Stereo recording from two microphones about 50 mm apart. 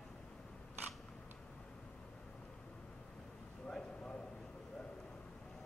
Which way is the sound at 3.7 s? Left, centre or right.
Centre.